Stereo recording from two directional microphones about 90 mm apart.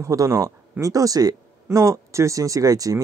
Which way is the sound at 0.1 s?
40° right (ahead or behind).